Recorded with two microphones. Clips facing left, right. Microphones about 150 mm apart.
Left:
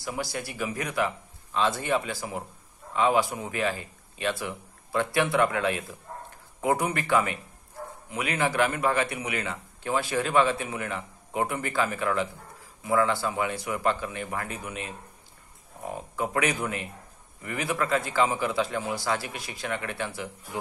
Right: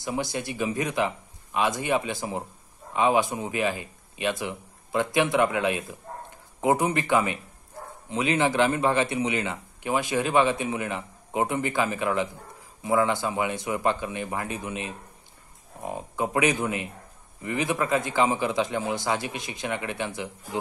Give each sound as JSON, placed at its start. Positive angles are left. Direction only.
{"t": 0.0, "sound": "a man's voice", "side_deg": -20}